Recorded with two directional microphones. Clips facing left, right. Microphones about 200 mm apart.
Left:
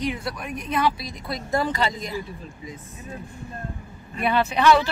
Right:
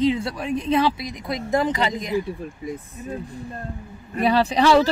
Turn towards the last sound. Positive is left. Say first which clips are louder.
# right 2 dB
turn(degrees=-35)  # may be behind; listen again after turning